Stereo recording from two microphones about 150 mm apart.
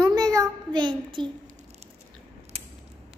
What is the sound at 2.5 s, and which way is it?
Creak, 45° right (ahead or behind).